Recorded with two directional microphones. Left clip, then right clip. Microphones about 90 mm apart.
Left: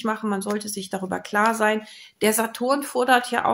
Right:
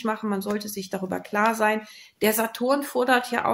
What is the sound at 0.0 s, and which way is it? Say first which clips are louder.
Speech: left 2 dB; 35° left (ahead or behind).